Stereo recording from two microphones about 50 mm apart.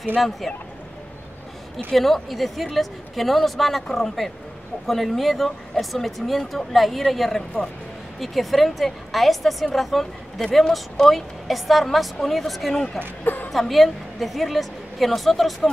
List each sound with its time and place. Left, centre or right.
0.2 s a woman's voice: centre
2.0 s a woman's voice: centre
13.2 s a sound: left
13.5 s a woman's voice: centre